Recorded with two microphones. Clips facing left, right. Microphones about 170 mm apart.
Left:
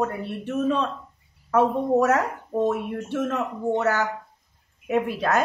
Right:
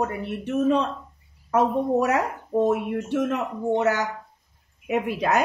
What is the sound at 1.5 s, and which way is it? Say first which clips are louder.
Speech: left 1 dB; 15° right (ahead or behind).